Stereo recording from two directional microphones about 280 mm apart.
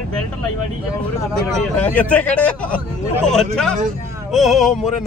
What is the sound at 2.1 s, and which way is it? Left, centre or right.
Speech, centre.